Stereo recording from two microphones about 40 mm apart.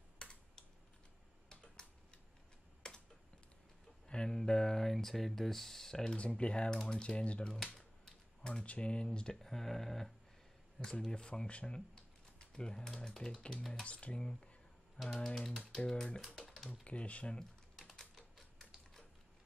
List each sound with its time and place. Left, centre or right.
0.2 s computer keyboard: left
1.5 s typing: centre
2.8 s computer keyboard: centre
4.1 s speech: centre
6.1 s speech: left
7.5 s speech: centre
8.4 s speech: left
9.4 s speech: centre
10.8 s speech: centre
13.8 s speech: left
14.1 s speech: centre
15.2 s speech: centre
16.8 s speech: left
17.9 s typewriter: centre